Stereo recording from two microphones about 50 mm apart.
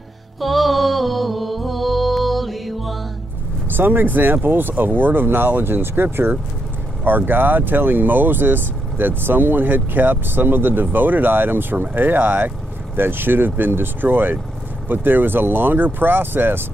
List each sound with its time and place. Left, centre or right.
0.4 s music: centre
3.6 s speech: right